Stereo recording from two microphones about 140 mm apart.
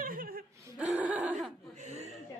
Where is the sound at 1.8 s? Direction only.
50° right (ahead or behind).